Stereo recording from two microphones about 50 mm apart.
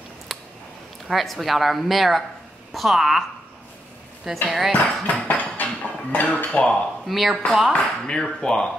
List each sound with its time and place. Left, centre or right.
0.3 s a sound: centre
1.0 s a woman's voice: centre
4.5 s a woman's voice: centre
5.0 s cutlery: left
6.2 s speech: left
7.1 s a woman's voice: centre
7.7 s speech: centre